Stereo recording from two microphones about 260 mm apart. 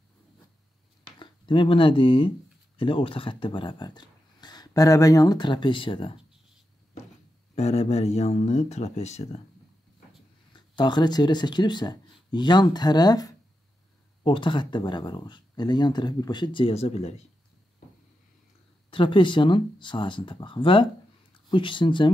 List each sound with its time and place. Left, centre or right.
1.2 s speech: centre
7.5 s speech: left
10.5 s speech: centre
18.9 s speech: centre